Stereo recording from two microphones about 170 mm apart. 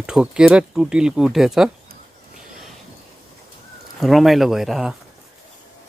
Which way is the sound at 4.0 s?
Centre (ahead or behind).